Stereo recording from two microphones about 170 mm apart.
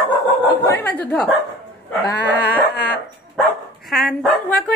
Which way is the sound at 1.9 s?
10° left (ahead or behind).